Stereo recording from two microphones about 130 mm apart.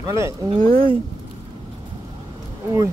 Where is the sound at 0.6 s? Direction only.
40° right (ahead or behind).